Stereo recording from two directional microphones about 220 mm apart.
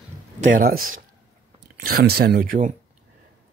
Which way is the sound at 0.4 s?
40° right (ahead or behind).